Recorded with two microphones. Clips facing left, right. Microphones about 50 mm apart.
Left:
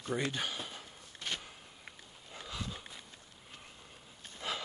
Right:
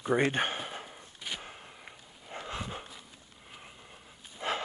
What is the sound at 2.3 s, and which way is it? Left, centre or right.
Dog, right.